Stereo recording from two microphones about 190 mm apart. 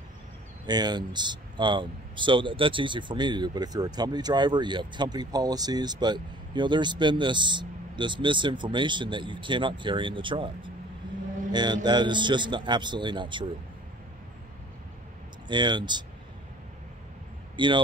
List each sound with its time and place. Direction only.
0.7 s speech: 20° right (ahead or behind)
15.4 s speech: 25° right (ahead or behind)
17.6 s speech: 25° right (ahead or behind)